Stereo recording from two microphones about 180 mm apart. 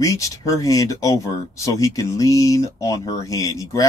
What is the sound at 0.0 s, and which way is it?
Speech, 20° left (ahead or behind).